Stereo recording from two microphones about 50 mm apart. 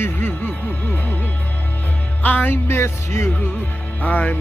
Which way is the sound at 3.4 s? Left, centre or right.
Left.